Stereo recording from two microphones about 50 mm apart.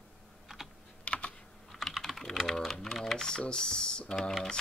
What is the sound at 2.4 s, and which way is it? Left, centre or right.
Typing, centre.